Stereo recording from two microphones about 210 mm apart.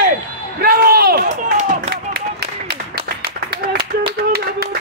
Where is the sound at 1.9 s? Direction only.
50° right (ahead or behind).